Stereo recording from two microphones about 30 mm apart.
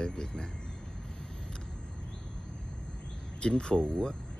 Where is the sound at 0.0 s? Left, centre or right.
Left.